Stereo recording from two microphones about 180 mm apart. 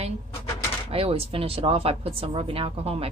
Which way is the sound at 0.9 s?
30° right (ahead or behind).